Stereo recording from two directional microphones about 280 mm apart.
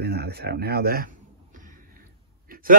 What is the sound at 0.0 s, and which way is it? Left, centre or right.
Speech, right.